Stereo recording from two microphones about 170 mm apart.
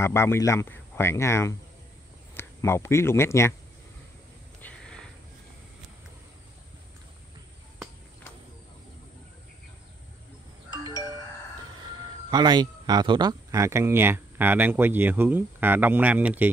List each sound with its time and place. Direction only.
0.0 s speech: 15° left (ahead or behind)
4.6 s a sound: 5° left (ahead or behind)
12.3 s speech: 25° right (ahead or behind); by 16.4 s 10° right (ahead or behind)